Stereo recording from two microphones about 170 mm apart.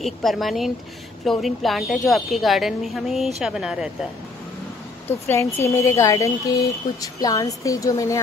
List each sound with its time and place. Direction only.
0.0 s speech: centre (ahead or behind)
5.3 s speech: 15° left (ahead or behind)